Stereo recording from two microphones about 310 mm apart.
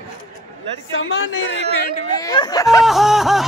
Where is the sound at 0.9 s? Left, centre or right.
Left.